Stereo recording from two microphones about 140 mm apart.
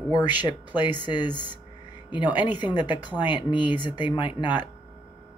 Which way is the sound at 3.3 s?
35° left (ahead or behind).